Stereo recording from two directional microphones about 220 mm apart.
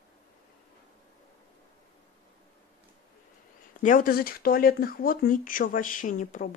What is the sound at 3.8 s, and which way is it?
Speech, 35° left (ahead or behind).